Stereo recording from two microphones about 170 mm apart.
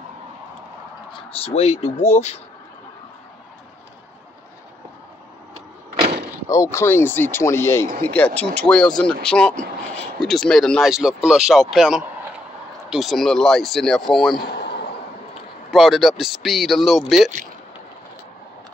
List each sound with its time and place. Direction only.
1.4 s speech: 35° left (ahead or behind)
6.5 s speech: 15° left (ahead or behind); by 14.3 s centre (ahead or behind)
14.4 s a sound: 70° left (ahead or behind)
15.7 s speech: centre (ahead or behind)